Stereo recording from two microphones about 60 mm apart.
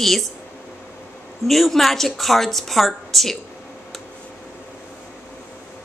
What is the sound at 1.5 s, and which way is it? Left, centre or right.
A woman's voice, centre.